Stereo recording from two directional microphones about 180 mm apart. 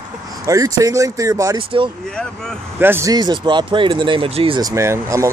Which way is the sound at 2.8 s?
15° right (ahead or behind).